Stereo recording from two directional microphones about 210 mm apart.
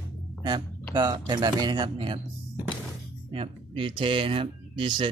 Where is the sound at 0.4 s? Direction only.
20° right (ahead or behind).